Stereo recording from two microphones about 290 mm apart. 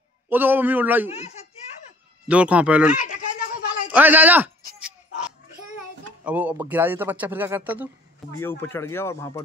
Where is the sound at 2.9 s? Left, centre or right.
Left.